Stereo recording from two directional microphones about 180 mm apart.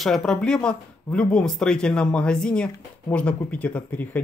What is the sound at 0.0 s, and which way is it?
Speech, centre (ahead or behind).